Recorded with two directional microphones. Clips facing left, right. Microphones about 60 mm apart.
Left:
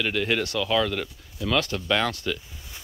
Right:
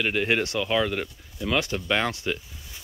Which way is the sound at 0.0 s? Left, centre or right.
Right.